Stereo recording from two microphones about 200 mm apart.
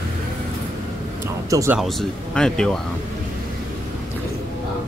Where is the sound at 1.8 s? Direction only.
Centre (ahead or behind).